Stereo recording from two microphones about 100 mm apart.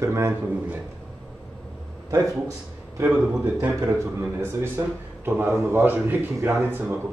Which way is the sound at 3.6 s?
20° right (ahead or behind).